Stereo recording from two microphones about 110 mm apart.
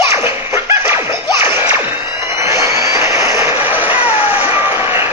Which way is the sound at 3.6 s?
15° right (ahead or behind).